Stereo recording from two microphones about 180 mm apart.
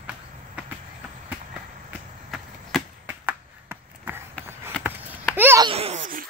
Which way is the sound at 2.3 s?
Centre (ahead or behind).